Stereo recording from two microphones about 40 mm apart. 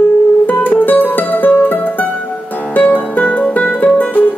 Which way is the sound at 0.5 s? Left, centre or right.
Left.